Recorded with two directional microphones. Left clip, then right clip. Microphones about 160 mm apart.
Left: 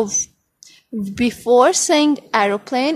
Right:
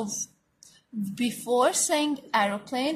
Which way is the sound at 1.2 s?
55° left (ahead or behind).